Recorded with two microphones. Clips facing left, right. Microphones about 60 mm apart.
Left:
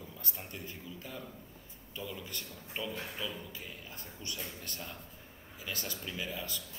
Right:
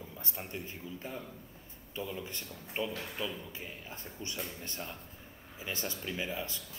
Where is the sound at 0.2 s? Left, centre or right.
Right.